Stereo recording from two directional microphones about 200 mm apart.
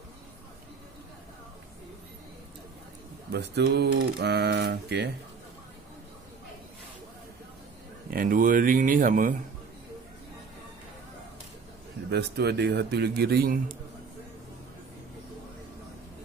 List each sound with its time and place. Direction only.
3.3 s speech: 55° right (ahead or behind)
8.1 s speech: 45° right (ahead or behind)
12.1 s speech: 55° right (ahead or behind)